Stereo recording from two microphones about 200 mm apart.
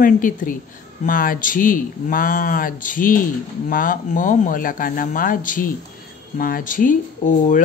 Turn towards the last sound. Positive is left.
turn(degrees=40)  # may be behind; listen again after turning